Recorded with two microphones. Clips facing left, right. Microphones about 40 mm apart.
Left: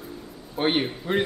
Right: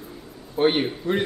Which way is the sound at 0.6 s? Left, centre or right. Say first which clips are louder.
Right 3 dB; centre.